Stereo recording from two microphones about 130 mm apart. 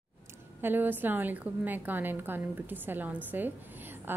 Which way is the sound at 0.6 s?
15° right (ahead or behind).